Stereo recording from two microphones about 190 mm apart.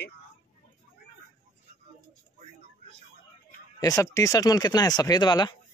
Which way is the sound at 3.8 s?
20° left (ahead or behind).